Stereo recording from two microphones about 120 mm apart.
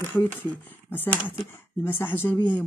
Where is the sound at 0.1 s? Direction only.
15° left (ahead or behind).